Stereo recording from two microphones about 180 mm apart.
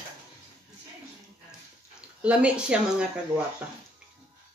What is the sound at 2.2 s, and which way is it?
Speech, 5° right (ahead or behind).